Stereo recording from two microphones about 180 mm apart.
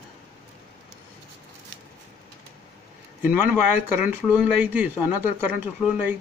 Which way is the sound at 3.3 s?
10° right (ahead or behind).